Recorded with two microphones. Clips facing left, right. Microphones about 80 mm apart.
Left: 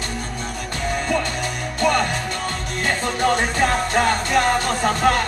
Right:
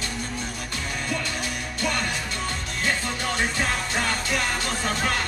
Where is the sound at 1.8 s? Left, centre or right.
Left.